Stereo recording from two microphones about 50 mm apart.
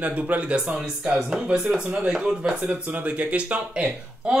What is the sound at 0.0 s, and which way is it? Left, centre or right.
Speech, right.